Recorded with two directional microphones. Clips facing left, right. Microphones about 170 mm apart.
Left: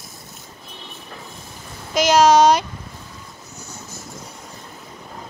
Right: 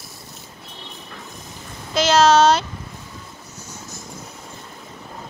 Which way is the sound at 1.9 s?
10° left (ahead or behind).